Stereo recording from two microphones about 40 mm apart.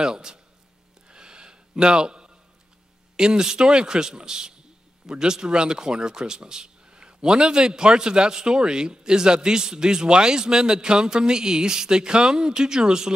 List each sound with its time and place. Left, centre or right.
0.0 s speech: centre
1.0 s a sound: right
3.2 s speech: centre